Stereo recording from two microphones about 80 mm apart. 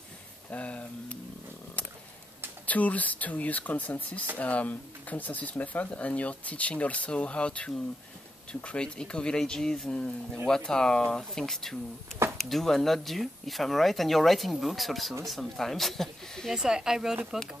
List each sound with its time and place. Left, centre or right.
0.5 s speech: centre
1.8 s a sound: centre
2.6 s speech: centre
16.5 s speech: centre